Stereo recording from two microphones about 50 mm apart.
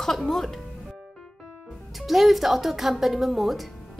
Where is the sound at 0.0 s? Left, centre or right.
Centre.